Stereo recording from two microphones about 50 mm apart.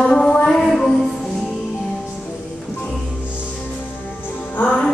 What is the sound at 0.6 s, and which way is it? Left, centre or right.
Music, centre.